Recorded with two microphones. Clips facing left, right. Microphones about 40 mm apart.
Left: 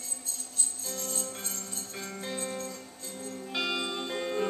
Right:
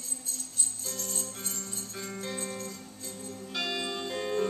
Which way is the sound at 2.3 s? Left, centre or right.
Centre.